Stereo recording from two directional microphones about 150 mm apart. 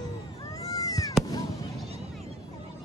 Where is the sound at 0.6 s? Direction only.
25° left (ahead or behind).